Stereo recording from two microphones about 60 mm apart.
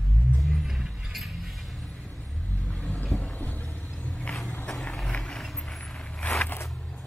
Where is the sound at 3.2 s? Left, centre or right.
Left.